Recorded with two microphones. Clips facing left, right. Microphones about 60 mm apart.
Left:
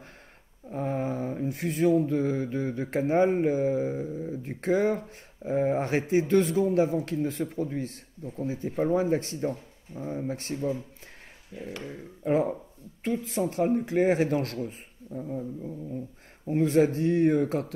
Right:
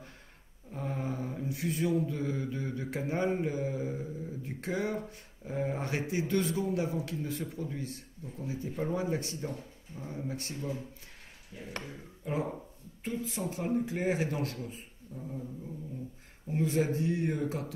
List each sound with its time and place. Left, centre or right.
0.7 s a sound: left
4.4 s speech: left
9.9 s speech: left
11.8 s speech: left
13.0 s speech: left
16.4 s speech: left